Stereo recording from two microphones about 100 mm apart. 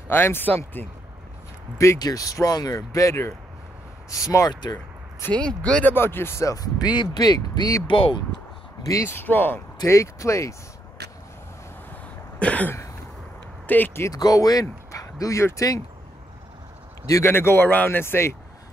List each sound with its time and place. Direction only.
0.1 s speech: 20° left (ahead or behind)
2.0 s speech: 40° left (ahead or behind)
5.2 s speech: 15° left (ahead or behind)
5.9 s speech: 20° left (ahead or behind); by 7.8 s 40° left (ahead or behind)
7.8 s speech: 60° left (ahead or behind)
9.0 s speech: 20° left (ahead or behind)
9.8 s speech: 30° left (ahead or behind)
11.9 s throat clearing: 15° left (ahead or behind)
13.7 s speech: 20° left (ahead or behind)
14.1 s speech: 40° left (ahead or behind)
17.2 s speech: 25° left (ahead or behind)